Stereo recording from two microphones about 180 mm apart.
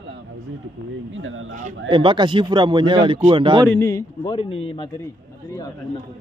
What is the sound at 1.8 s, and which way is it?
Speech, 25° right (ahead or behind).